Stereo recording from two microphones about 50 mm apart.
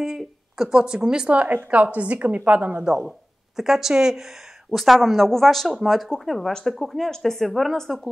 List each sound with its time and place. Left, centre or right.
0.0 s speech: centre
1.5 s a woman's voice: right
3.5 s speech: centre